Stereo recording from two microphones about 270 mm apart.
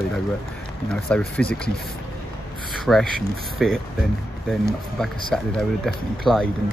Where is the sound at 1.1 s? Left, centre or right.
Centre.